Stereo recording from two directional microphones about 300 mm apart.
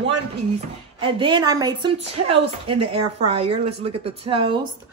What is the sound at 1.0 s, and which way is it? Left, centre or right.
Speech, centre.